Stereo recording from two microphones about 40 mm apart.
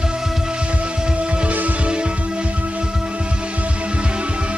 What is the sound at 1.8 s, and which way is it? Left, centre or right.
Music, right.